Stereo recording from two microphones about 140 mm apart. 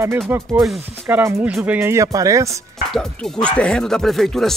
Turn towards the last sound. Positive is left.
turn(degrees=5)  # may be behind; listen again after turning